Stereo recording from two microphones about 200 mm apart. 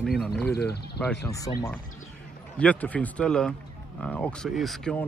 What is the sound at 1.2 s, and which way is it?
Speech, 15° left (ahead or behind).